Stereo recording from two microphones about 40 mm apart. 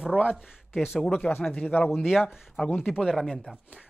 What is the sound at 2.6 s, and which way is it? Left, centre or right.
Speech, left.